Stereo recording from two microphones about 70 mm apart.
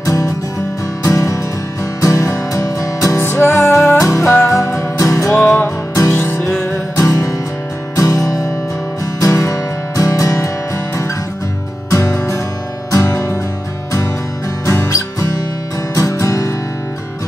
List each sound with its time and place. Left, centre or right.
0.0 s music: left
3.3 s music: left
5.9 s music: left
11.9 s music: left
14.7 s music: left